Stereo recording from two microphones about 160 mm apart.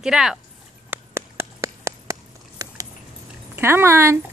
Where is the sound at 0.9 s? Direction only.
15° right (ahead or behind).